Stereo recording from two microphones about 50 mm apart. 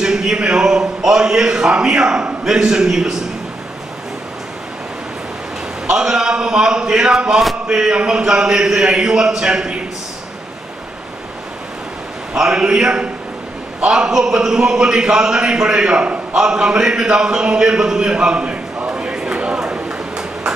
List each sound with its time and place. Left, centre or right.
0.0 s a man's voice: centre
5.9 s a man's voice: centre
12.4 s a man's voice: centre
18.9 s a sound: centre